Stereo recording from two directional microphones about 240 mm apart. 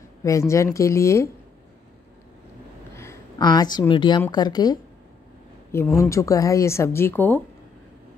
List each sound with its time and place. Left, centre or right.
0.2 s speech: centre
2.9 s a sound: centre
4.2 s speech: centre